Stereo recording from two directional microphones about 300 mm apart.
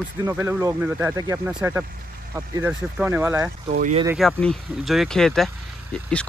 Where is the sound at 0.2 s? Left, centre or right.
Centre.